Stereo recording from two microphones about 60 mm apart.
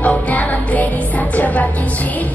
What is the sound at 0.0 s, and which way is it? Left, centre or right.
Music, left.